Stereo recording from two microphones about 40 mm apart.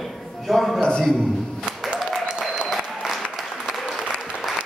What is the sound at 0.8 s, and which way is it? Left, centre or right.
Speech, left.